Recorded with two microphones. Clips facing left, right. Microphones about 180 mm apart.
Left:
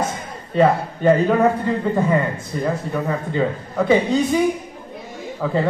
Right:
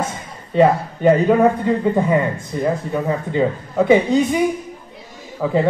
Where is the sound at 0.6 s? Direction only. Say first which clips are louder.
Right 2 dB; 15° right (ahead or behind).